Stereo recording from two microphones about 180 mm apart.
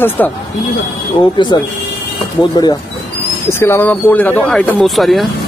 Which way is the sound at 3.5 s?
15° left (ahead or behind).